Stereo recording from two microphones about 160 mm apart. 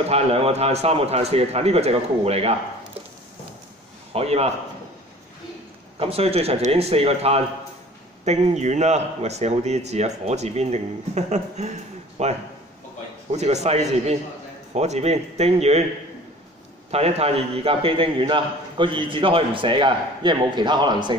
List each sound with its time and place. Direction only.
0.1 s a man's voice: 40° right (ahead or behind)
4.1 s speech: 40° right (ahead or behind)
5.9 s a man's voice: 40° right (ahead or behind)
16.9 s a man's voice: 40° right (ahead or behind)